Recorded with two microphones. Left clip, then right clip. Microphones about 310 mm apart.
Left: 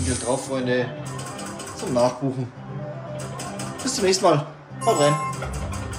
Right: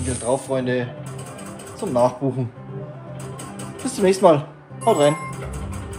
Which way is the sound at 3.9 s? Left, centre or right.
Centre.